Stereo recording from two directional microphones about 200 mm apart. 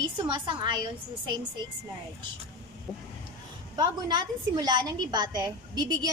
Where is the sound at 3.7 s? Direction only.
20° right (ahead or behind).